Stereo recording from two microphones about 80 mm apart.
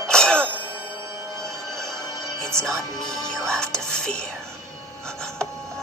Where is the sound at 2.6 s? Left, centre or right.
Centre.